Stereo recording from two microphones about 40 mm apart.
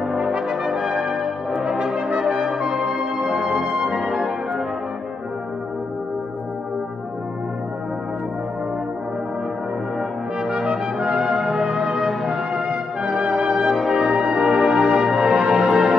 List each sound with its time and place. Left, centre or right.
0.5 s brass instrument: centre
11.1 s brass instrument: centre
11.3 s music: centre
13.5 s music: right
14.0 s brass instrument: centre
14.4 s music: centre